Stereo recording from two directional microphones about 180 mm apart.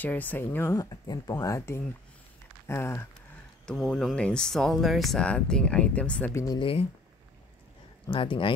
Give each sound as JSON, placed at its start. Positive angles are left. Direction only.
{"t": 0.0, "sound": "speech", "side_deg": 10}
{"t": 3.6, "sound": "speech", "side_deg": 0}
{"t": 6.4, "sound": "speech", "side_deg": 25}
{"t": 8.1, "sound": "speech", "side_deg": 30}